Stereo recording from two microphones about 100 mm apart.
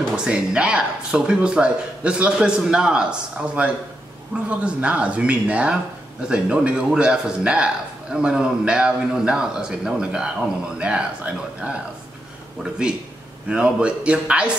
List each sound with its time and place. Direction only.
0.1 s a man's voice: 10° right (ahead or behind)
13.5 s a man's voice: 10° right (ahead or behind)